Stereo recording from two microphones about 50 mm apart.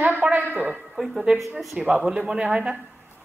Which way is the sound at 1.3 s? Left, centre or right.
Centre.